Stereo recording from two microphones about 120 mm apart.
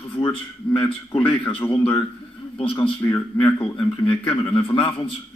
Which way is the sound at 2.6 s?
50° left (ahead or behind).